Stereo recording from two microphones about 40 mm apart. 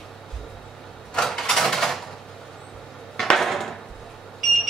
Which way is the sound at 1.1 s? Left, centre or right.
Centre.